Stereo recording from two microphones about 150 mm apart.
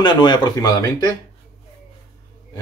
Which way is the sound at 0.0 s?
30° left (ahead or behind).